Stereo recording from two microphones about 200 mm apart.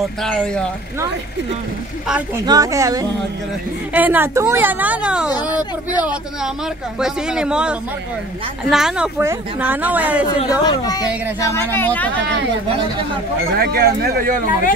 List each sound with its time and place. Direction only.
0.2 s speech: 5° left (ahead or behind)
2.0 s speech: 5° right (ahead or behind)
2.4 s speech: 20° right (ahead or behind)
10.6 s speech: 20° left (ahead or behind)
13.6 s speech: 50° right (ahead or behind)